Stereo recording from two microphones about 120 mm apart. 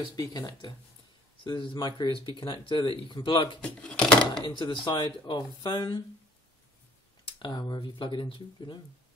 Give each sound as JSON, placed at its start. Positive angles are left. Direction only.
{"t": 0.1, "sound": "speech", "side_deg": 35}
{"t": 3.8, "sound": "speech", "side_deg": 10}
{"t": 4.5, "sound": "speech", "side_deg": 40}
{"t": 7.2, "sound": "speech", "side_deg": 40}